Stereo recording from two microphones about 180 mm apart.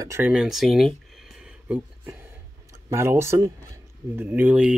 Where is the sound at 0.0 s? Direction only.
15° right (ahead or behind).